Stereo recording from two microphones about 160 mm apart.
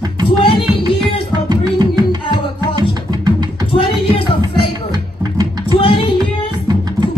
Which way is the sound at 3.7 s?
35° left (ahead or behind).